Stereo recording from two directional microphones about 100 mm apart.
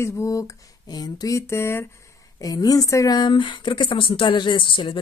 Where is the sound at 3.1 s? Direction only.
50° left (ahead or behind).